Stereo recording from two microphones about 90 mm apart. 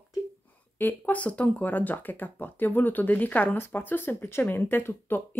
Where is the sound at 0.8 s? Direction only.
15° left (ahead or behind).